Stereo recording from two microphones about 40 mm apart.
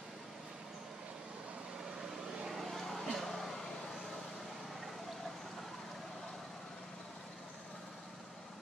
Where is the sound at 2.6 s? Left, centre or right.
Centre.